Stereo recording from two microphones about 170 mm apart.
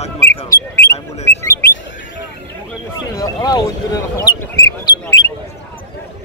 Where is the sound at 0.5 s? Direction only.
15° left (ahead or behind).